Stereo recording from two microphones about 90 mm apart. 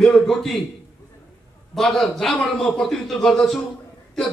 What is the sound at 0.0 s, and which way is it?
Speech, 5° left (ahead or behind).